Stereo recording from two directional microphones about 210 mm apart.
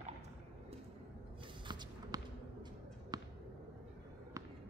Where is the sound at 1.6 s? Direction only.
20° right (ahead or behind).